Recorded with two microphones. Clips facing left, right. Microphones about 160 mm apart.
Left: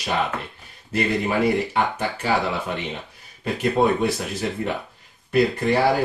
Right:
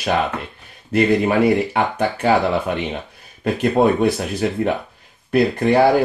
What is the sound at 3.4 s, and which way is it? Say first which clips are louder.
Speech: right 4 dB; 55° right (ahead or behind).